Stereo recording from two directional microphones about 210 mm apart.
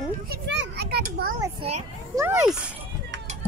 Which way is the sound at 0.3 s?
55° right (ahead or behind).